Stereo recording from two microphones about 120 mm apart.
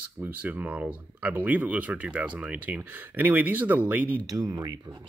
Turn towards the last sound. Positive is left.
turn(degrees=-30)  # may be behind; listen again after turning